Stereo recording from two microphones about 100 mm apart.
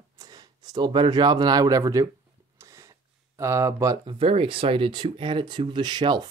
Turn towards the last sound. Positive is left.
turn(degrees=-45)  # may be behind; listen again after turning